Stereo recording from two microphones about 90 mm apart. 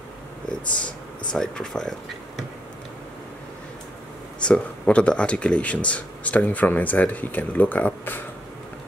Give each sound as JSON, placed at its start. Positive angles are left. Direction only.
{"t": 1.3, "sound": "speech", "side_deg": 10}
{"t": 4.4, "sound": "speech", "side_deg": 10}